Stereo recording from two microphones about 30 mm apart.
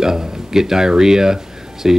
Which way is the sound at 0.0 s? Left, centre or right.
Centre.